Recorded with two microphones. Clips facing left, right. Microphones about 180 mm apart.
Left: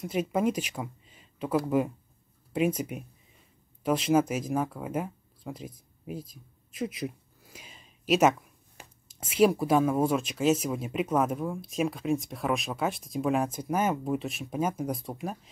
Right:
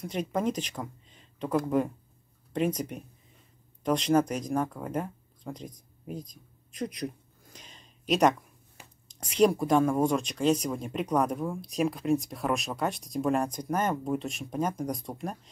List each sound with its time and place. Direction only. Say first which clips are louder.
0.0 s speech: left 2 dB; 5° left (ahead or behind)